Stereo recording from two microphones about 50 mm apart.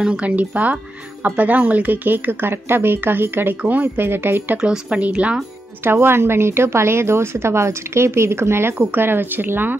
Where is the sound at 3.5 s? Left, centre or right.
Right.